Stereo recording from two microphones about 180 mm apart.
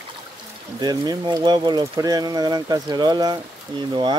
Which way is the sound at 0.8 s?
25° right (ahead or behind).